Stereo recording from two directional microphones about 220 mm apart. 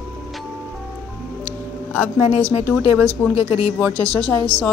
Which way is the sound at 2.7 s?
5° right (ahead or behind).